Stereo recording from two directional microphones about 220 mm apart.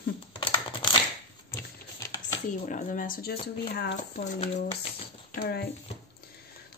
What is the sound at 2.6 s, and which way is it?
Speech, 35° left (ahead or behind).